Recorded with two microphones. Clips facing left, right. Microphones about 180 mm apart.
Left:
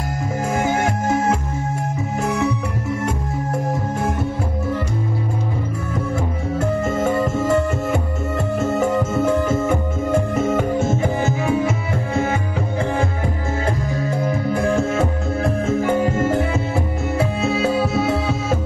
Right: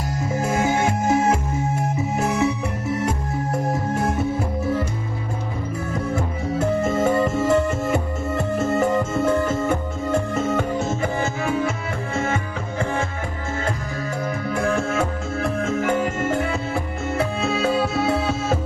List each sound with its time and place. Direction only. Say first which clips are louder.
2.1 s music: left 1 dB; 5° right (ahead or behind)
7.0 s music: even; centre (ahead or behind)
14.5 s music: left 2 dB; 20° left (ahead or behind)
17.5 s music: left 2 dB; centre (ahead or behind)